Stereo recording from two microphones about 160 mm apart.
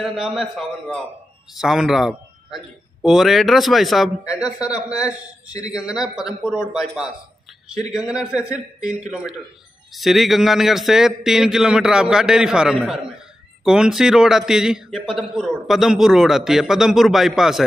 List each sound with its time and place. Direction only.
0.0 s a man's voice: centre (ahead or behind)
5.5 s a man's voice: 25° left (ahead or behind)
5.8 s a man's voice: 5° right (ahead or behind)
8.3 s a man's voice: 20° left (ahead or behind)
9.9 s a man's voice: centre (ahead or behind)